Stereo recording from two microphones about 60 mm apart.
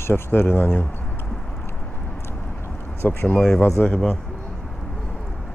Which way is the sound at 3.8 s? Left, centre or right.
Centre.